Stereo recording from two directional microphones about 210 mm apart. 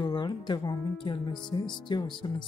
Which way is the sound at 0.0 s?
20° left (ahead or behind).